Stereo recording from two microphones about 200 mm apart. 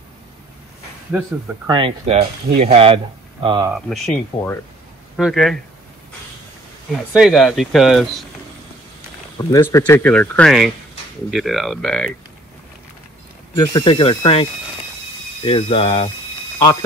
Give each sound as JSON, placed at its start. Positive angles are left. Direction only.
{"t": 1.7, "sound": "speech", "side_deg": -25}
{"t": 3.7, "sound": "speech", "side_deg": 0}
{"t": 4.3, "sound": "speech", "side_deg": 25}
{"t": 5.1, "sound": "speech", "side_deg": 0}
{"t": 6.9, "sound": "speech", "side_deg": -5}
{"t": 9.5, "sound": "speech", "side_deg": 15}
{"t": 13.6, "sound": "speech", "side_deg": 25}